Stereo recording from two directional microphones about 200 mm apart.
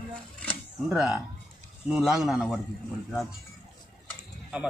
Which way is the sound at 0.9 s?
5° right (ahead or behind).